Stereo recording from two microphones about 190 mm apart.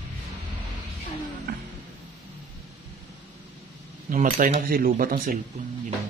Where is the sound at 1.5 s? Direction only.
50° right (ahead or behind).